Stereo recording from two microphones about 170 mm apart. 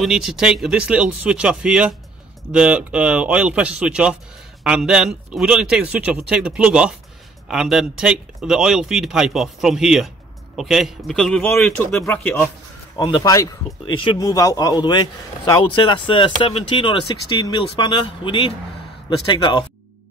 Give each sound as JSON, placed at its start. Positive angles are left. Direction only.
{"t": 0.0, "sound": "a man's voice", "side_deg": 0}
{"t": 12.9, "sound": "speech", "side_deg": 20}